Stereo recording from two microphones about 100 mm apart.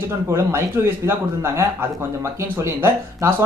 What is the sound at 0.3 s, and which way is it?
Speech, 25° right (ahead or behind).